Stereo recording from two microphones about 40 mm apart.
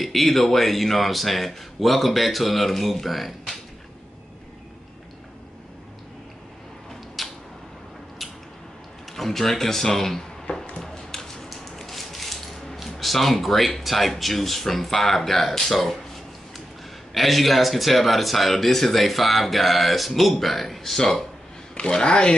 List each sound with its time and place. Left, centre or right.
0.0 s speech: centre
7.2 s a sound: centre
9.1 s speech: centre
10.4 s a sound: centre
17.1 s speech: centre
21.7 s speech: left